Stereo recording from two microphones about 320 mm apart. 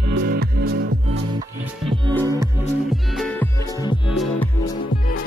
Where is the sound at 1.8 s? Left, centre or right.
Centre.